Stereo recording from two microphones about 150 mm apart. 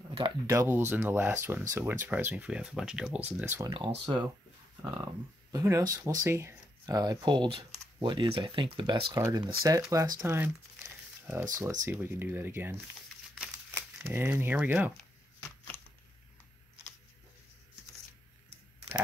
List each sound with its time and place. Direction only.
0.5 s speech: 15° right (ahead or behind)
3.7 s speech: 35° right (ahead or behind); by 12.7 s 15° right (ahead or behind)
13.7 s speech: 15° right (ahead or behind)
15.7 s a sound: 10° left (ahead or behind)